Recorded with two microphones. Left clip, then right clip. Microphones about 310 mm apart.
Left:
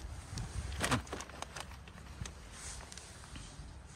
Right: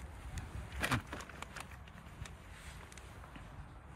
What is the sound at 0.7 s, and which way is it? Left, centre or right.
Vehicle, left.